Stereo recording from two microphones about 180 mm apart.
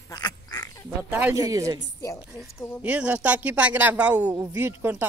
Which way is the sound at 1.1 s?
10° right (ahead or behind).